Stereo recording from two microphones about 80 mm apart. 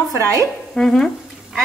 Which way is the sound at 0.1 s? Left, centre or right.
Right.